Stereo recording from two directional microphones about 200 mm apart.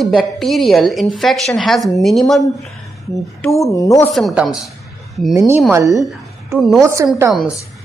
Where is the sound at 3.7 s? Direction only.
15° left (ahead or behind).